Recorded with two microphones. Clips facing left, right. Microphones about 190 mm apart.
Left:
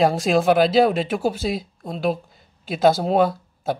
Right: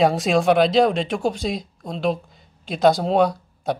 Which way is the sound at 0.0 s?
Centre (ahead or behind).